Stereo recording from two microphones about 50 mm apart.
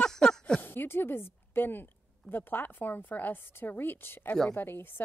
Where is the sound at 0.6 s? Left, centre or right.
Left.